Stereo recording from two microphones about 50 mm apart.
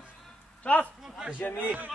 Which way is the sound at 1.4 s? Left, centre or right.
Left.